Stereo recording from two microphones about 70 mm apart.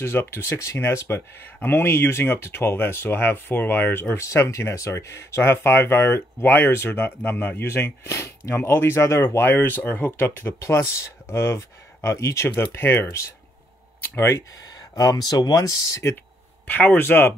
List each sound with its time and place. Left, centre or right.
0.0 s speech: left
10.6 s speech: left
14.7 s speech: left
16.0 s speech: left
16.6 s speech: left